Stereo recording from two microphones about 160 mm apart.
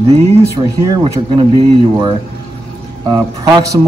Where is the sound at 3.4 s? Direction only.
20° right (ahead or behind).